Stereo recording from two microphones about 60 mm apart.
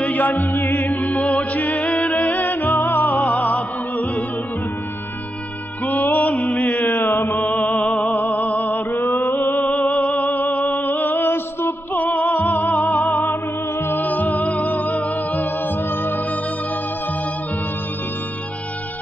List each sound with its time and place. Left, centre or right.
0.0 s music: left
1.0 s music: left
5.9 s music: left
6.1 s mantra: left
6.8 s music: left
8.7 s mantra: left
9.6 s music: left